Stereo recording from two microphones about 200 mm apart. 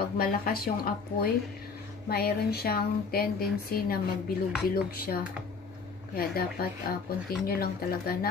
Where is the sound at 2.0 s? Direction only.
50° left (ahead or behind).